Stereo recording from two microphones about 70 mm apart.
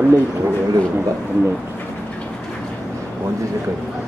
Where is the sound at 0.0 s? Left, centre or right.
Right.